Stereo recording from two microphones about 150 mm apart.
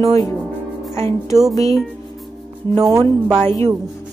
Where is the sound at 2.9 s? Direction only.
25° right (ahead or behind).